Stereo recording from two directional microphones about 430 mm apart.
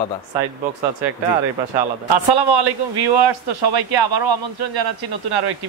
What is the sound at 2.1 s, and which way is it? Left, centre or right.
A man's voice, right.